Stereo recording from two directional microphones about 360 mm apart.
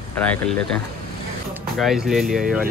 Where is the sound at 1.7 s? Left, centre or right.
Centre.